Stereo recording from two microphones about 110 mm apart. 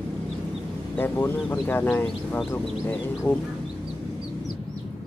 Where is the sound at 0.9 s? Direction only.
20° left (ahead or behind).